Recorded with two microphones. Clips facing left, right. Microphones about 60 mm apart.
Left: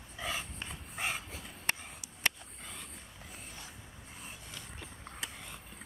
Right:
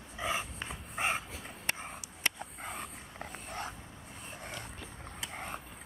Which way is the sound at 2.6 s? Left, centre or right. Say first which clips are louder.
Right 6 dB; right.